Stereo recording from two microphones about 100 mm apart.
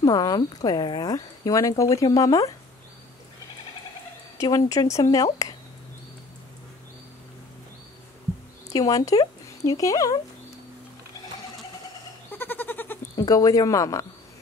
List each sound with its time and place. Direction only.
0.0 s speech: 40° left (ahead or behind)
4.4 s speech: 35° left (ahead or behind)
8.6 s speech: 35° left (ahead or behind)
12.3 s a sound: 20° left (ahead or behind)
13.2 s speech: 40° left (ahead or behind)